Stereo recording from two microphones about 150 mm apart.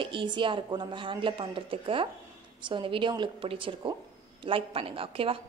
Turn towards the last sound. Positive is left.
turn(degrees=-40)  # may be behind; listen again after turning